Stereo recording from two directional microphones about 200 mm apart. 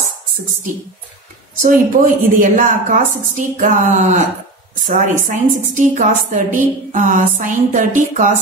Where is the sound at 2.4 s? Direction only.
40° right (ahead or behind).